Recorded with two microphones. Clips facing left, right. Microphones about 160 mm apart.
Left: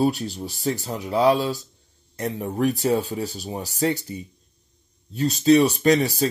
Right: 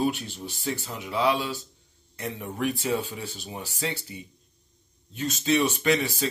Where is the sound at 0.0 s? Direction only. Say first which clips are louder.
Left 5 dB; 35° left (ahead or behind).